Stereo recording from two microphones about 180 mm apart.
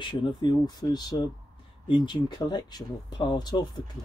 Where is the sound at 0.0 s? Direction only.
25° left (ahead or behind).